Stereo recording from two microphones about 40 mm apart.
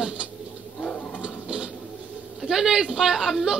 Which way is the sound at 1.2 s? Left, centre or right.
Right.